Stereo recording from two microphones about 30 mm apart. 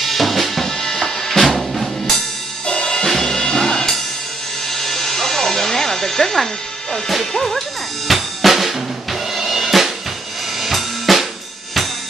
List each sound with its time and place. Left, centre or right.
0.0 s drum: centre
0.7 s drum: centre
1.5 s drum kit: centre
2.6 s drum kit: left
3.2 s music: left
7.2 s speech: centre
8.1 s drum kit: centre
9.3 s music: centre
10.6 s drum kit: centre